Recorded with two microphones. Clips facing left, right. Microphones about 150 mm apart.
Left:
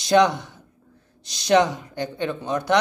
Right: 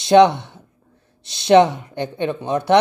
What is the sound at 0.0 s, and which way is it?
Speech, 25° right (ahead or behind).